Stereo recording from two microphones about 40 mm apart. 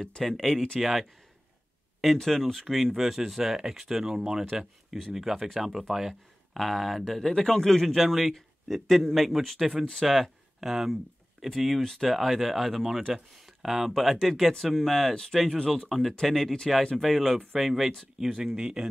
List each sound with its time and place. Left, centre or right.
0.3 s a man's voice: centre
2.2 s a man's voice: centre
6.5 s a man's voice: centre
12.1 s a man's voice: centre